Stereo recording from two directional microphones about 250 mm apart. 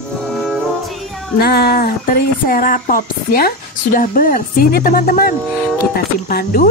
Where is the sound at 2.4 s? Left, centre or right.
Left.